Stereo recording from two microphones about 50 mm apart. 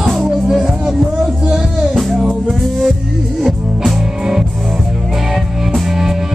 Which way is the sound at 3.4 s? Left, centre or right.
Centre.